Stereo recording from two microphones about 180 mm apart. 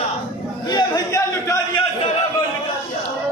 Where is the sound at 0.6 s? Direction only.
20° left (ahead or behind).